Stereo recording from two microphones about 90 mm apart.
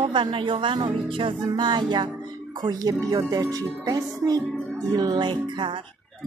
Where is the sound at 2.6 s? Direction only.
45° right (ahead or behind); by 5.8 s 65° right (ahead or behind).